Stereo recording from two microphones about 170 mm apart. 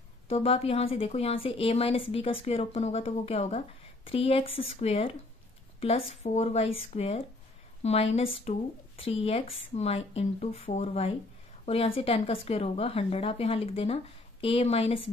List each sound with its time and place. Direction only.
0.3 s a woman's voice: 35° left (ahead or behind)